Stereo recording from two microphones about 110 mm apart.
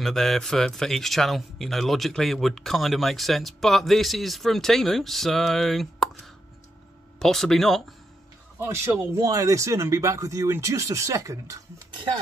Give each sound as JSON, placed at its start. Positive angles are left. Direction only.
{"t": 0.0, "sound": "speech", "side_deg": 0}
{"t": 7.2, "sound": "speech", "side_deg": 5}
{"t": 9.1, "sound": "speech", "side_deg": -30}